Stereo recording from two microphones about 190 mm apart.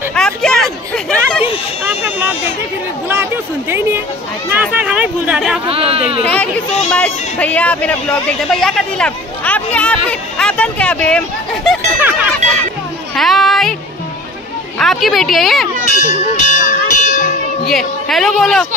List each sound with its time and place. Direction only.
0.1 s a sound: 5° left (ahead or behind)
4.5 s a sound: 10° right (ahead or behind)
5.7 s speech: 30° right (ahead or behind)
6.2 s speech: 5° left (ahead or behind)
12.0 s music: 10° right (ahead or behind)
13.1 s a woman's voice: centre (ahead or behind)
14.8 s a woman's voice: centre (ahead or behind)
16.1 s a sound: 40° left (ahead or behind)
17.6 s a woman's voice: centre (ahead or behind)